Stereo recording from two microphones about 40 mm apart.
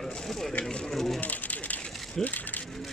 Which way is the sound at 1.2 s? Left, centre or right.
Left.